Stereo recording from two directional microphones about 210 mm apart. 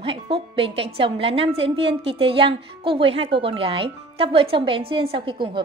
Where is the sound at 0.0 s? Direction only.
25° right (ahead or behind).